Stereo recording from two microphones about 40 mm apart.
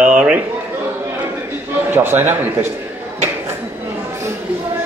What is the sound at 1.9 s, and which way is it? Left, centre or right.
Speech, right.